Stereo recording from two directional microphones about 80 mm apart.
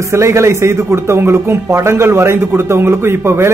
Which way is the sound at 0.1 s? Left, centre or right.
Right.